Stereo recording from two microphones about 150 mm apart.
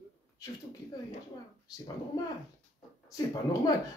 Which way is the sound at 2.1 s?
25° left (ahead or behind).